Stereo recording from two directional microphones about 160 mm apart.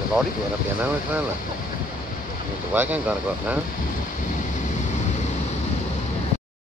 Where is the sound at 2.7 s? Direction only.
10° right (ahead or behind).